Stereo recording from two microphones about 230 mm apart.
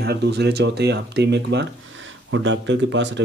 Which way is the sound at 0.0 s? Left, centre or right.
Right.